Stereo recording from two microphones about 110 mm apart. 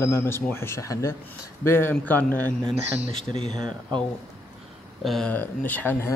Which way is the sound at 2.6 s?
90° left.